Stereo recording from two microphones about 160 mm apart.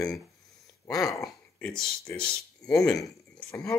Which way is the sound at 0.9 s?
20° left (ahead or behind).